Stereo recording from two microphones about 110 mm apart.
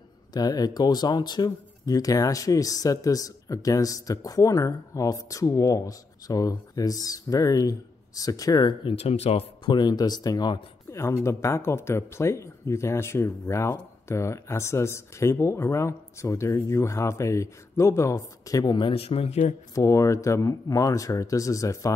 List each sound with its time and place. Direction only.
0.3 s speech: 35° left (ahead or behind)
8.9 s speech: 70° left (ahead or behind)
9.7 s speech: 40° left (ahead or behind)
10.9 s a sound: 25° left (ahead or behind)
11.2 s speech: 25° left (ahead or behind); by 18.9 s 40° left (ahead or behind)
18.9 s speech: 65° left (ahead or behind); by 19.5 s 80° left
19.7 s speech: 30° left (ahead or behind)